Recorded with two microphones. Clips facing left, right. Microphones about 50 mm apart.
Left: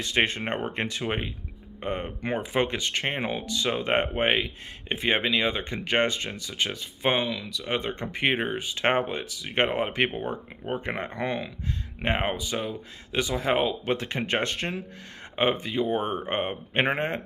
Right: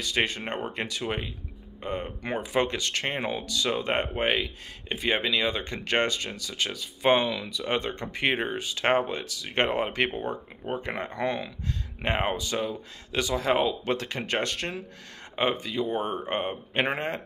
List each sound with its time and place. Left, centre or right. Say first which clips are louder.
0.0 s speech: left 2 dB; left; by 6.0 s centre
6.0 s speech: left 1 dB; left
7.2 s speech: right 2 dB; centre
7.9 s speech: left 1 dB; left